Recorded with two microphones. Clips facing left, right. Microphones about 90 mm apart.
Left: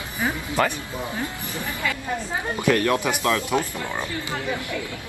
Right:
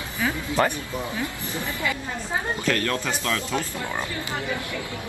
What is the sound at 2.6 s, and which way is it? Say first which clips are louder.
Speech: left 8 dB; 15° left (ahead or behind).